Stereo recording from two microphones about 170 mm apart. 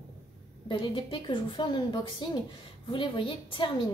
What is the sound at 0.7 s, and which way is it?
A woman's voice, 30° left (ahead or behind).